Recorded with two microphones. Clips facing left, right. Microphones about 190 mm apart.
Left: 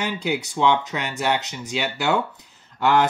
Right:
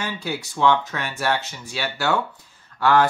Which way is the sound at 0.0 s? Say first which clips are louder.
Left 4 dB; 20° left (ahead or behind).